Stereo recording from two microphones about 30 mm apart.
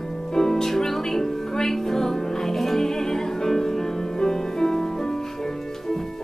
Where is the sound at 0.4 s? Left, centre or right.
Centre.